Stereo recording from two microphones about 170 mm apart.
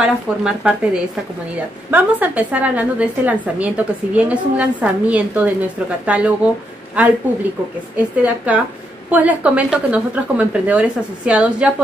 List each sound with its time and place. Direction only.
0.0 s a woman's voice: 5° right (ahead or behind)
8.2 s a woman's voice: 10° right (ahead or behind)